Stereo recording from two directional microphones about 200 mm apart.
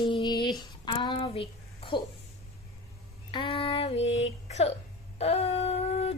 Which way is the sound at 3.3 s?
25° left (ahead or behind).